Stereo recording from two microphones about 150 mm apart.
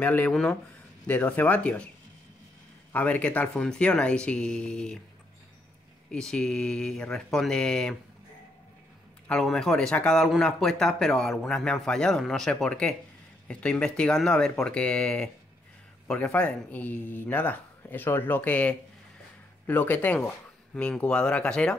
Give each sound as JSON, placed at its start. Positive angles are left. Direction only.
{"t": 0.0, "sound": "a man's voice", "side_deg": 10}
{"t": 2.9, "sound": "a man's voice", "side_deg": 10}
{"t": 6.1, "sound": "speech", "side_deg": 5}
{"t": 9.3, "sound": "a man's voice", "side_deg": 5}